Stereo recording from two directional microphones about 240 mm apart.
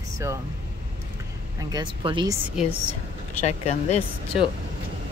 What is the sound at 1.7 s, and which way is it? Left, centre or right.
Speech, centre.